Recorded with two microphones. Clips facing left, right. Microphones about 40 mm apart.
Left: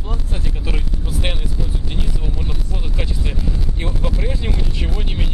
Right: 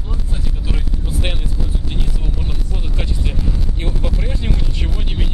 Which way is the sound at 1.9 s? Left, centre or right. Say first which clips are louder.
Even; centre.